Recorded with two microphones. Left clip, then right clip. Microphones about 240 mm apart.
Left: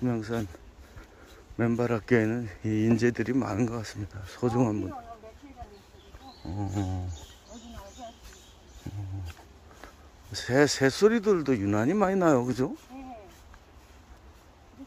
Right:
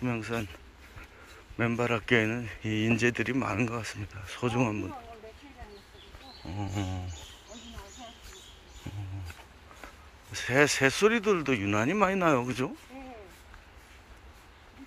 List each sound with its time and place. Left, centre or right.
0.0 s speech: centre
1.6 s speech: left
6.4 s roaring cats: centre
8.8 s roaring cats: centre
10.3 s speech: left